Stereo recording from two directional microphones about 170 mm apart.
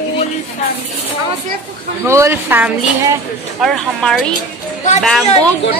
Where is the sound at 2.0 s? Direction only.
15° right (ahead or behind).